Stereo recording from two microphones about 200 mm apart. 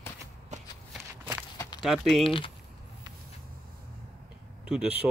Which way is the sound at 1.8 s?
Centre (ahead or behind).